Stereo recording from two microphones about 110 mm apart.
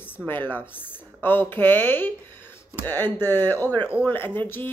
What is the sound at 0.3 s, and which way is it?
A woman's voice, 15° left (ahead or behind).